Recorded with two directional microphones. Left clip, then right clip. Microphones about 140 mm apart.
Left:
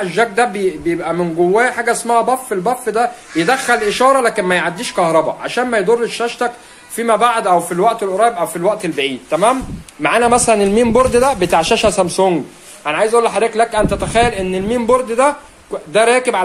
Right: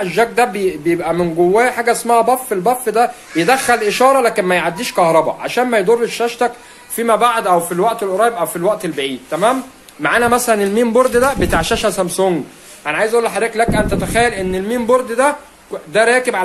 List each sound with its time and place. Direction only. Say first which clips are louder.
0.0 s a man's voice: even; 10° right (ahead or behind); by 16.4 s 10° left (ahead or behind)